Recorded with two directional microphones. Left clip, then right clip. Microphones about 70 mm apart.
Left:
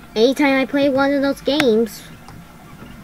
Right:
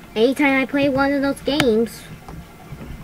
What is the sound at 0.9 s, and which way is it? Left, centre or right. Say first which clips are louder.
Speech: left 2 dB; centre.